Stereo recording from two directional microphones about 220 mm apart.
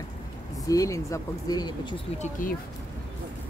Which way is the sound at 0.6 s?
15° left (ahead or behind).